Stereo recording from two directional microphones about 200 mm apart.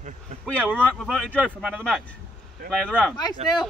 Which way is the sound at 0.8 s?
5° left (ahead or behind).